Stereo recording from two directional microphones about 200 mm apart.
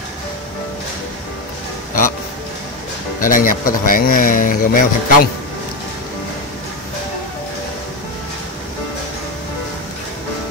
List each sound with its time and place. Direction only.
3.2 s speech: 45° left (ahead or behind)